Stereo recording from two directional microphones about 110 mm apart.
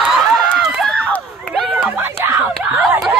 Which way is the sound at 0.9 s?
10° left (ahead or behind).